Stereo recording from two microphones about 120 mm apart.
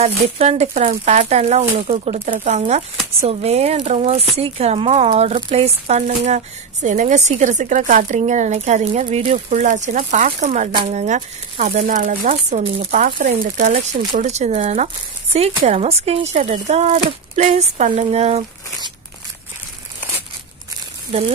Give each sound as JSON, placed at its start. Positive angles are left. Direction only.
{"t": 0.0, "sound": "speech", "side_deg": -60}
{"t": 10.9, "sound": "speech", "side_deg": -70}
{"t": 14.2, "sound": "speech", "side_deg": -70}
{"t": 15.3, "sound": "speech", "side_deg": -60}